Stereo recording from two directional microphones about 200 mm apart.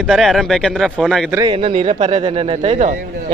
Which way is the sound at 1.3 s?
20° right (ahead or behind).